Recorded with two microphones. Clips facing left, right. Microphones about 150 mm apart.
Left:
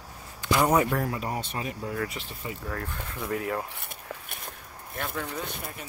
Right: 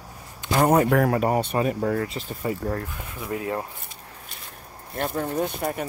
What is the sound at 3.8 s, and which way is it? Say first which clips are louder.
Walk: left 3 dB; 60° left (ahead or behind).